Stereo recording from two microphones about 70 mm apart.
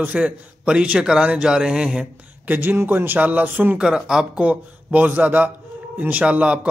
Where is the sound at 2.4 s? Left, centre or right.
Right.